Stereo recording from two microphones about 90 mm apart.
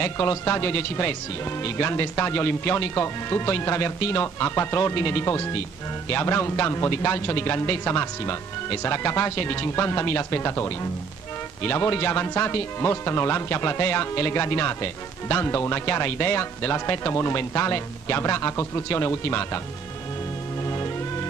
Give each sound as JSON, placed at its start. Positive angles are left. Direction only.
{"t": 0.0, "sound": "speech", "side_deg": 25}
{"t": 20.6, "sound": "music", "side_deg": 30}